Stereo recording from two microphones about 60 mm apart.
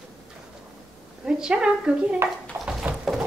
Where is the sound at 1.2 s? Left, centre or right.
Centre.